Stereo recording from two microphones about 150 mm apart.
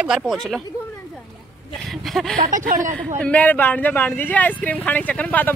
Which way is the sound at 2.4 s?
65° right (ahead or behind).